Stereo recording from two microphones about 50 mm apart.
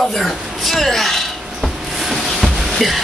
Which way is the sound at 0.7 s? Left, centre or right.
Centre.